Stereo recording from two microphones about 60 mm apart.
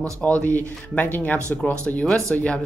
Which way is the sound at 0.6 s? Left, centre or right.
Left.